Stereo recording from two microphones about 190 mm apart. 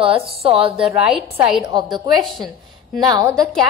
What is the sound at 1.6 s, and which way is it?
A woman's voice, 25° right (ahead or behind).